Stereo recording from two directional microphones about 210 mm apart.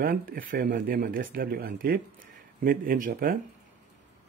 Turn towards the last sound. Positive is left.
turn(degrees=-40)  # may be behind; listen again after turning